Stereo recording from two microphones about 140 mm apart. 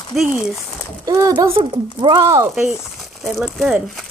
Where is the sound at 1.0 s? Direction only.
25° right (ahead or behind).